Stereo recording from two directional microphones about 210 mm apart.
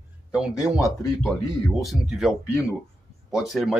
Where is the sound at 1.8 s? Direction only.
Centre (ahead or behind).